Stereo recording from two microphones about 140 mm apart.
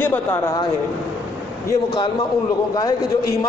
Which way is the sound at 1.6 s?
30° left (ahead or behind).